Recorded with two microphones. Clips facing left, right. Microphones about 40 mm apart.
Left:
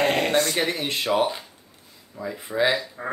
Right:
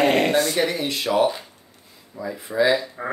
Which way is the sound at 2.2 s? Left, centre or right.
Centre.